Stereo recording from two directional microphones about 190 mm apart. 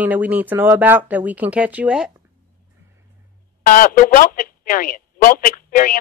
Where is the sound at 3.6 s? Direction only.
50° left (ahead or behind).